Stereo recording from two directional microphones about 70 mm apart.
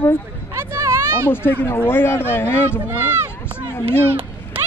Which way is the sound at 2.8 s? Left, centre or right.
Right.